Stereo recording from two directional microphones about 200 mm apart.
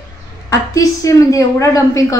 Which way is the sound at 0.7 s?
15° left (ahead or behind).